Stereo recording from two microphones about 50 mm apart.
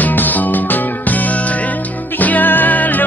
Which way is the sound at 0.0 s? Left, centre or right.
Left.